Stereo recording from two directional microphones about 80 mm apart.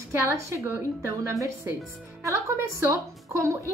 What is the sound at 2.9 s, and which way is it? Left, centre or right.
Speech, right.